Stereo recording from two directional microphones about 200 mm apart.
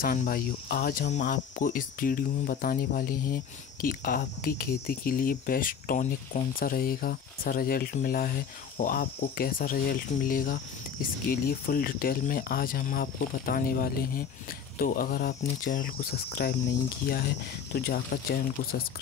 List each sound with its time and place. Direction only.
0.0 s speech: 45° left (ahead or behind)
17.7 s speech: 50° left (ahead or behind)